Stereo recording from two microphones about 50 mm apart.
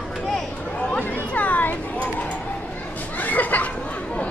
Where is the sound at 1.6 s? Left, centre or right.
Left.